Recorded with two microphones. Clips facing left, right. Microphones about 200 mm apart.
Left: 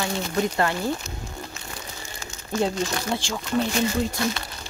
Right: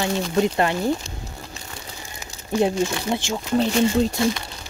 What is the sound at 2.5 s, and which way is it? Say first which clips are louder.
Speech: right 4 dB; 15° right (ahead or behind).